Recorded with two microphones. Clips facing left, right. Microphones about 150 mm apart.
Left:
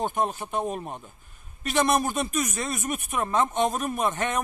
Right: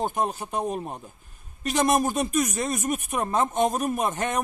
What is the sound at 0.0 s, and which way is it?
Speech, 40° right (ahead or behind).